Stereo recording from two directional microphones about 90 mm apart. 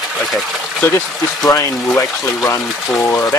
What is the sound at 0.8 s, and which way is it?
Speech, 25° left (ahead or behind).